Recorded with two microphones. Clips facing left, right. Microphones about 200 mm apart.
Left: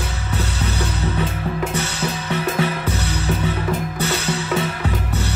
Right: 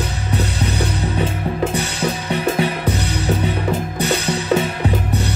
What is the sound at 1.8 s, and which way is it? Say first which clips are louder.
Music: right 3 dB; 15° right (ahead or behind).